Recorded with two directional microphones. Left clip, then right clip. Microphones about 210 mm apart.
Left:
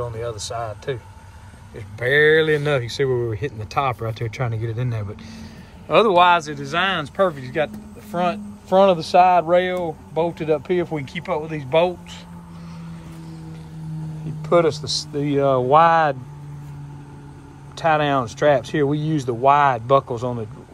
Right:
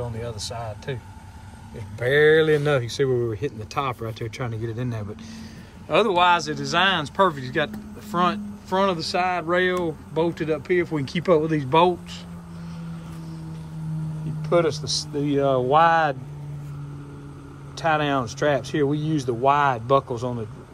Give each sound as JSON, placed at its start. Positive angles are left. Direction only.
{"t": 0.2, "sound": "speech", "side_deg": -5}
{"t": 2.0, "sound": "speech", "side_deg": -20}
{"t": 11.1, "sound": "speech", "side_deg": -15}
{"t": 14.4, "sound": "speech", "side_deg": -10}
{"t": 17.7, "sound": "speech", "side_deg": -15}